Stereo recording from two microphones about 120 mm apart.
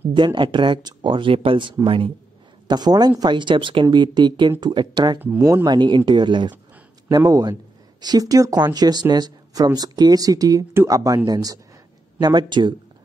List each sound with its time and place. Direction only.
0.1 s speech: 40° right (ahead or behind)
2.7 s speech: 35° right (ahead or behind)
5.4 s speech: 25° right (ahead or behind)
5.7 s speech: 40° right (ahead or behind)
7.1 s speech: 30° right (ahead or behind)